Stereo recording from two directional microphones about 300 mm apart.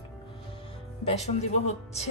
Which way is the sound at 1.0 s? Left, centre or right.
Left.